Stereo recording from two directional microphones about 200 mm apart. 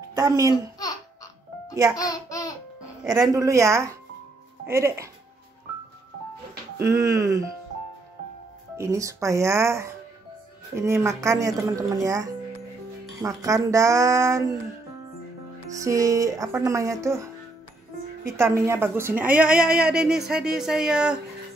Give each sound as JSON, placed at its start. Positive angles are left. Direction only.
{"t": 0.1, "sound": "speech", "side_deg": -15}
{"t": 0.7, "sound": "music", "side_deg": 20}
{"t": 2.0, "sound": "speech", "side_deg": 15}
{"t": 3.1, "sound": "speech", "side_deg": -15}
{"t": 6.8, "sound": "speech", "side_deg": -15}
{"t": 8.7, "sound": "speech", "side_deg": -15}
{"t": 15.8, "sound": "a woman's voice", "side_deg": -15}